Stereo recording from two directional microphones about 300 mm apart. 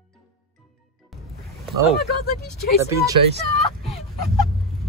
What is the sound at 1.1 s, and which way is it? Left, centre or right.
Music, centre.